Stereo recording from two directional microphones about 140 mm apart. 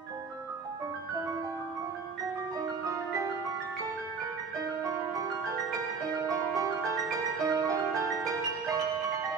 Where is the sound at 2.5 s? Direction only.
25° right (ahead or behind).